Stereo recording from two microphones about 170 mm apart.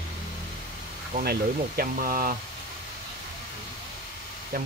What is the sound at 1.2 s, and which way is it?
Speech, 60° right (ahead or behind).